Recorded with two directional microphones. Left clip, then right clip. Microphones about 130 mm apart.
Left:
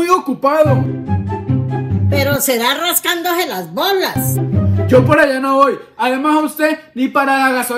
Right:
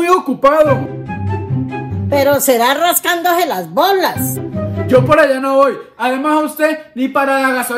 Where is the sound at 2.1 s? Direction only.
45° right (ahead or behind).